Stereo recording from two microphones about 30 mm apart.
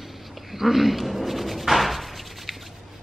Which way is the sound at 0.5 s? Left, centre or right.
Centre.